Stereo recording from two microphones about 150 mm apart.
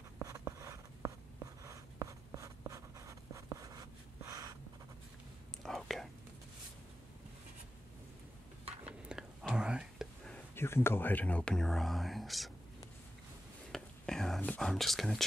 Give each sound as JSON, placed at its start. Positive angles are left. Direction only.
{"t": 0.2, "sound": "writing", "side_deg": -20}
{"t": 5.6, "sound": "whispering", "side_deg": 0}
{"t": 9.1, "sound": "whispering", "side_deg": -5}
{"t": 10.3, "sound": "speech", "side_deg": 15}
{"t": 13.7, "sound": "whispering", "side_deg": 5}